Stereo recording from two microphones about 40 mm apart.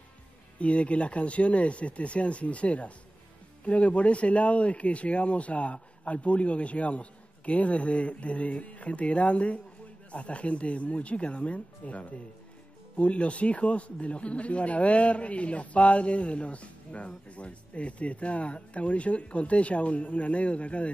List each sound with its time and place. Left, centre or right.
0.6 s speech: left